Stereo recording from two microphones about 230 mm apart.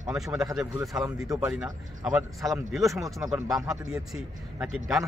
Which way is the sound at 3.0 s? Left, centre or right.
Centre.